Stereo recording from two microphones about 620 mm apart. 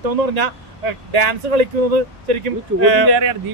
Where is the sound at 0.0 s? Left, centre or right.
Right.